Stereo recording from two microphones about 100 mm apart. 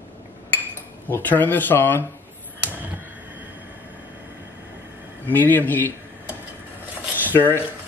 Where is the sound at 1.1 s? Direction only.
20° left (ahead or behind).